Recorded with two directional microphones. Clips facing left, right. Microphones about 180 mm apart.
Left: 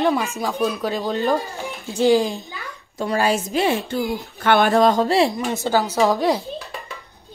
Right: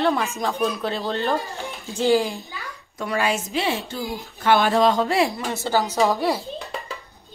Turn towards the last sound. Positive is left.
turn(degrees=15)  # may be behind; listen again after turning